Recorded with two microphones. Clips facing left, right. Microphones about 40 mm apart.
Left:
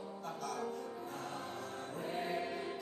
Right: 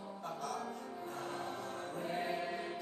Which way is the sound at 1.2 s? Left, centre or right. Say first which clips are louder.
Right 4 dB; centre.